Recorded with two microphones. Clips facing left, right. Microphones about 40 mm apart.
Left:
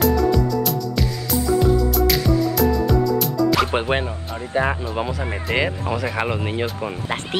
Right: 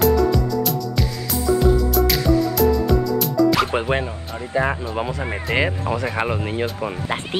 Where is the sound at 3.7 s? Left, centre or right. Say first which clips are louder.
Even; left.